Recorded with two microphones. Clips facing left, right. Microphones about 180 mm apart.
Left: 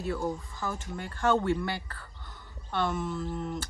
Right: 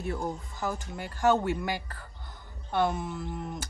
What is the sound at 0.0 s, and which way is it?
A woman's voice, 20° right (ahead or behind).